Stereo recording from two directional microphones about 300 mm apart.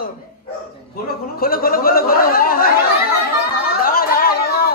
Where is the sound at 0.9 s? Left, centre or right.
Left.